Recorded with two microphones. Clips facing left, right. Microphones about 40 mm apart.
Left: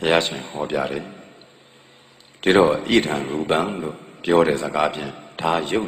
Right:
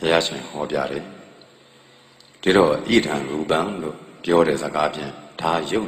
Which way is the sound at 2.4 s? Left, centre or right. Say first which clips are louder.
Even; left.